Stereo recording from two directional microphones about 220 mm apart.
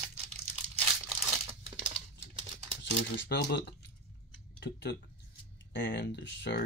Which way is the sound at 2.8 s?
50° left (ahead or behind).